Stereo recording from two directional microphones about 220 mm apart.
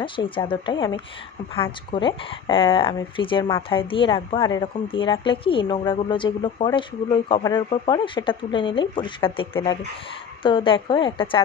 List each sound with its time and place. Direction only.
0.0 s speech: 20° left (ahead or behind)